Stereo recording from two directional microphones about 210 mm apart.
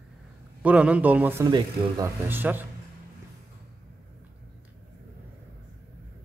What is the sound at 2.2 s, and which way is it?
Speech, 10° right (ahead or behind).